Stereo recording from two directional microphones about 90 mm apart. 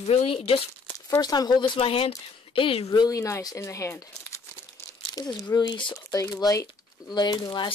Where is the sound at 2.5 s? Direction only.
75° left (ahead or behind).